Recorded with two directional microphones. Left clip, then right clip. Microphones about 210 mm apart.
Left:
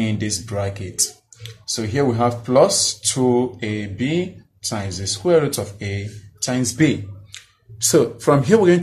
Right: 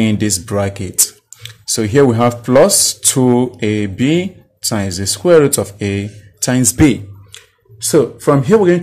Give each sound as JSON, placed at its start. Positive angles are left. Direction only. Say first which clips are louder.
{"t": 0.0, "sound": "speech", "louder": "right 8 dB", "side_deg": -50}
{"t": 7.3, "sound": "speech", "louder": "left 1 dB", "side_deg": -25}